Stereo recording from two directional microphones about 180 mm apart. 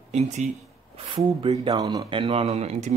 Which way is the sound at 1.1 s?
30° right (ahead or behind).